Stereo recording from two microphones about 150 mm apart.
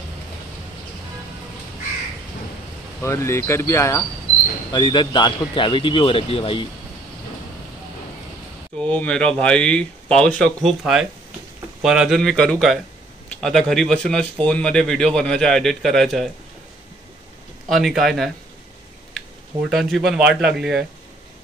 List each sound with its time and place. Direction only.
3.0 s speech: 20° left (ahead or behind)
4.6 s a man's voice: 30° left (ahead or behind)
8.7 s a man's voice: 10° left (ahead or behind)
17.6 s a man's voice: centre (ahead or behind)
19.7 s a man's voice: centre (ahead or behind)